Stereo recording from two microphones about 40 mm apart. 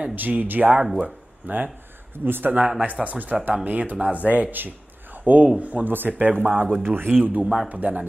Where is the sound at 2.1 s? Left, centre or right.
Right.